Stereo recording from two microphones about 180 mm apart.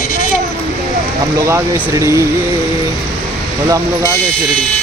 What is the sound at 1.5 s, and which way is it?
Speech, 15° right (ahead or behind).